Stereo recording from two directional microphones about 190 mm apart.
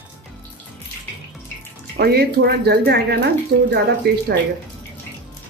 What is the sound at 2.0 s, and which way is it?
Speech, 55° right (ahead or behind).